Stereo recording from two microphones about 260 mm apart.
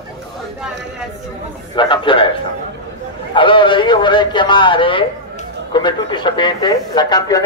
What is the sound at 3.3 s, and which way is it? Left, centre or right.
A man's voice, centre.